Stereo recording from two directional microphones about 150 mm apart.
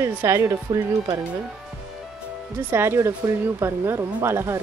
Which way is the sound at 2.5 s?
15° right (ahead or behind).